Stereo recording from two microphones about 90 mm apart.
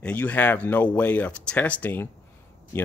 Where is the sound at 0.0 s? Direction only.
15° left (ahead or behind).